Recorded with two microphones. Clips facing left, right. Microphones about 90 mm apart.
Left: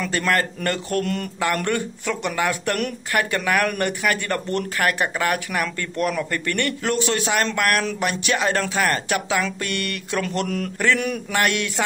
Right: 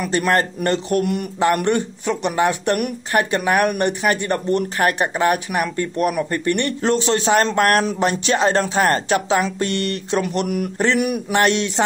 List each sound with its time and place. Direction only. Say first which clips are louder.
0.0 s speech: right 4 dB; 20° right (ahead or behind)
10.2 s speech: right 3 dB; 20° right (ahead or behind)